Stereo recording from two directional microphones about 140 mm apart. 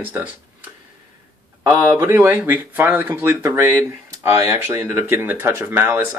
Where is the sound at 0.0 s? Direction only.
10° right (ahead or behind).